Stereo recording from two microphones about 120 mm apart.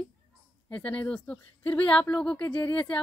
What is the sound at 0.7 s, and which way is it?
Speech, 10° left (ahead or behind).